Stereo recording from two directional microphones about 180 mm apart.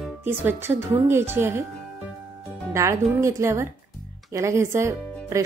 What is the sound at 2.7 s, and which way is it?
Speech, 15° right (ahead or behind).